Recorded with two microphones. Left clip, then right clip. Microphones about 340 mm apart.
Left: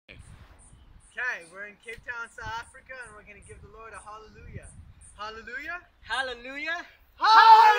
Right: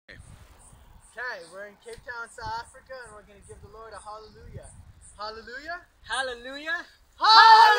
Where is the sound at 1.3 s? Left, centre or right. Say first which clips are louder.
Left 1 dB; centre.